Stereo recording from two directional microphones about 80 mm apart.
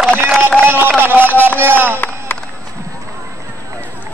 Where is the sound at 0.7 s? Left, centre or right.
Right.